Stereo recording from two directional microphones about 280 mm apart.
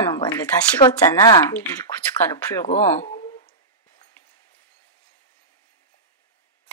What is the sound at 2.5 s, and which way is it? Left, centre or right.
Speech, left.